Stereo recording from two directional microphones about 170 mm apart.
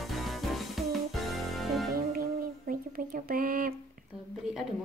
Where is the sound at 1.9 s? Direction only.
60° right (ahead or behind).